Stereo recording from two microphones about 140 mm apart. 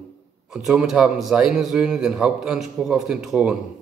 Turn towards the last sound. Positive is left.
turn(degrees=-5)  # may be behind; listen again after turning